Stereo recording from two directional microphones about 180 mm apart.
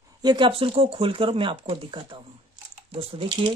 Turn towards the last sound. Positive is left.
turn(degrees=-30)  # may be behind; listen again after turning